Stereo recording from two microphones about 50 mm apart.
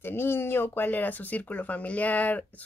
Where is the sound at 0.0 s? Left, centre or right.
Left.